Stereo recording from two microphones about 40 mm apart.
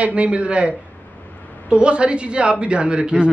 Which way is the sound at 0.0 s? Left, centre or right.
Right.